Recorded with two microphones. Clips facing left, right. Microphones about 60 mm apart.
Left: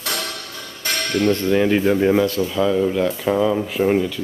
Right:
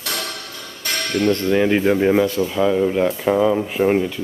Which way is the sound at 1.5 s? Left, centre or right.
Centre.